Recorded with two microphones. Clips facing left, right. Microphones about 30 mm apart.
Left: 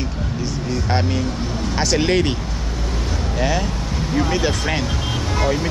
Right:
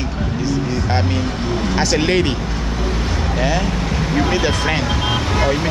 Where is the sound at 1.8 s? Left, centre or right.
Centre.